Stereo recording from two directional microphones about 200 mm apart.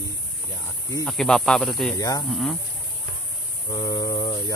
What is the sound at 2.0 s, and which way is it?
Speech, 20° left (ahead or behind).